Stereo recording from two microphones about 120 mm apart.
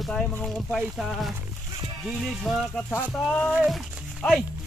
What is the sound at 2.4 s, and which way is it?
Speech, 5° left (ahead or behind).